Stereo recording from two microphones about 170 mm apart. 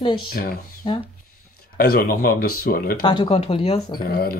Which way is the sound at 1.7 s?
60° left (ahead or behind).